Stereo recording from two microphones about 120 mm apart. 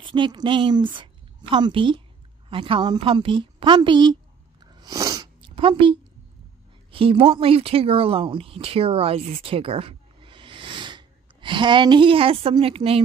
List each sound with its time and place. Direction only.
0.0 s a woman's voice: 40° right (ahead or behind)
4.7 s sneeze: 30° right (ahead or behind)
5.4 s a woman's voice: 45° right (ahead or behind)